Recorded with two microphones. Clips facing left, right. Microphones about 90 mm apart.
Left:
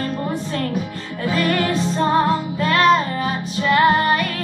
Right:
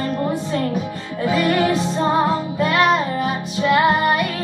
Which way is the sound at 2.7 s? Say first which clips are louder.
Left 2 dB; 15° right (ahead or behind).